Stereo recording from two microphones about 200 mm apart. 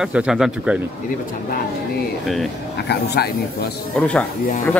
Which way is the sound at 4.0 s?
5° left (ahead or behind).